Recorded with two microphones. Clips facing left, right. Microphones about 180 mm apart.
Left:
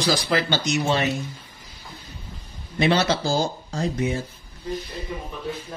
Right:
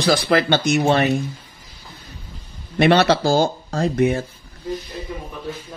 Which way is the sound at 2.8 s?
65° right (ahead or behind).